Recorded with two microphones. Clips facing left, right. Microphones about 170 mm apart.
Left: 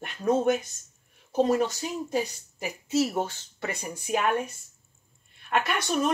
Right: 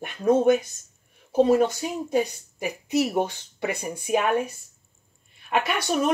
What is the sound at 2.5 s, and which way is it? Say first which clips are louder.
A woman's voice: right 2 dB; 15° right (ahead or behind).